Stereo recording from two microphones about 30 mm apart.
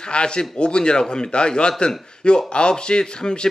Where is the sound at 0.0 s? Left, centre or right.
Left.